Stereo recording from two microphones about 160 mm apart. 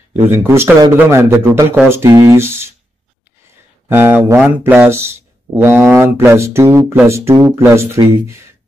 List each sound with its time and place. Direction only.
0.1 s speech: 15° right (ahead or behind)
3.9 s speech: 15° right (ahead or behind)